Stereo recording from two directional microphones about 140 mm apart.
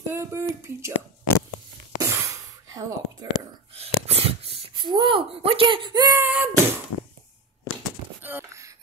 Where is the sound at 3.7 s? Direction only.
45° right (ahead or behind); by 6.2 s 30° right (ahead or behind).